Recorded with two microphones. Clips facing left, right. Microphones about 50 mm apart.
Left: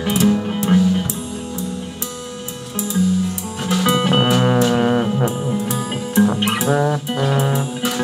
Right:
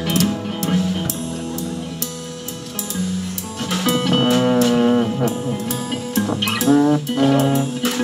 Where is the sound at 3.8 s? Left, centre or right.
Left.